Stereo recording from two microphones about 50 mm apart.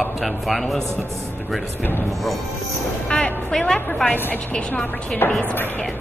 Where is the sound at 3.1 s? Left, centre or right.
Centre.